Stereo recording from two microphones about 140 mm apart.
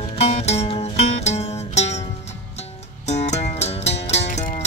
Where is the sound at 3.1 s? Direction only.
55° left (ahead or behind).